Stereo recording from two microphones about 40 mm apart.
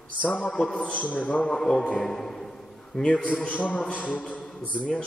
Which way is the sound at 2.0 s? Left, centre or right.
Centre.